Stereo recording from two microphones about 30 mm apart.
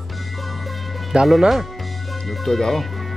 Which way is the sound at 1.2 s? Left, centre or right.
Centre.